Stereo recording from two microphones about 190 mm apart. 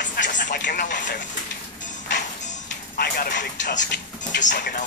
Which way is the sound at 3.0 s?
60° left (ahead or behind).